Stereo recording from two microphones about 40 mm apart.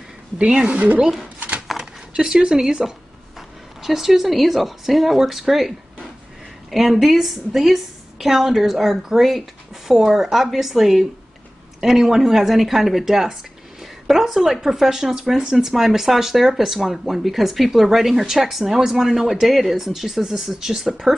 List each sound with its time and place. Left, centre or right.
0.4 s a woman's voice: right
1.8 s zipper: centre
3.3 s a woman's voice: centre